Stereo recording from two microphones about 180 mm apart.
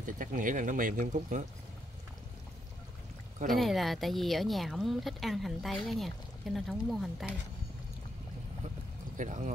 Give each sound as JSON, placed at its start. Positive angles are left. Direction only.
{"t": 0.0, "sound": "speech", "side_deg": -45}
{"t": 3.5, "sound": "speech", "side_deg": 0}
{"t": 9.1, "sound": "speech", "side_deg": -45}